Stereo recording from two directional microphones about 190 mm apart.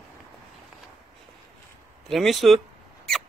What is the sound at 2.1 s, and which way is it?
Speech, centre (ahead or behind).